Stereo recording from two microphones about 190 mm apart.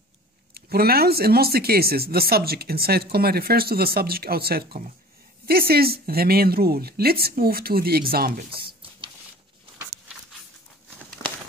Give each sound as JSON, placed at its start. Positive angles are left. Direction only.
{"t": 0.6, "sound": "speech", "side_deg": -55}